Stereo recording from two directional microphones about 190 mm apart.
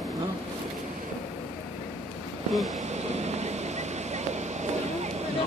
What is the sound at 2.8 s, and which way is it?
Vehicle, 35° right (ahead or behind).